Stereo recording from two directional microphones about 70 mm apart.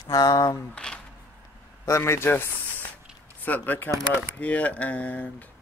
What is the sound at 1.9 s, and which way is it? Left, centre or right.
Speech, left.